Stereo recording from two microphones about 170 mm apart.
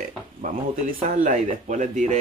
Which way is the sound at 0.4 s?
55° right (ahead or behind).